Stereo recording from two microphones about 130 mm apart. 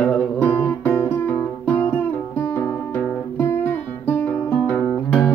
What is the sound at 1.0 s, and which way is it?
Music, 15° left (ahead or behind).